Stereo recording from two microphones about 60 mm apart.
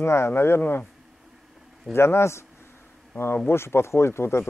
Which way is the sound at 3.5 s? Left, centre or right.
Left.